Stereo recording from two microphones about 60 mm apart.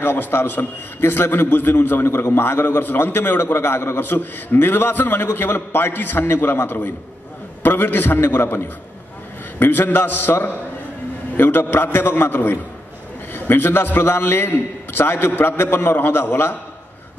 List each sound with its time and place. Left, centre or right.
0.0 s a man's voice: left
2.0 s a man's voice: left